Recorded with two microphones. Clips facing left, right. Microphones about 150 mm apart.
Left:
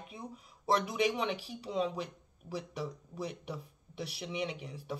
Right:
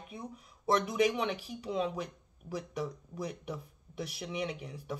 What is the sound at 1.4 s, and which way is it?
A woman's voice, 35° left (ahead or behind).